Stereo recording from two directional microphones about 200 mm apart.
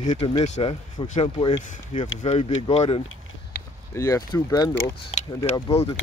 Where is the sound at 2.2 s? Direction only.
30° left (ahead or behind).